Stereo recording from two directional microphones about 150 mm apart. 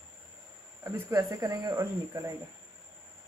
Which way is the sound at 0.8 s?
20° right (ahead or behind).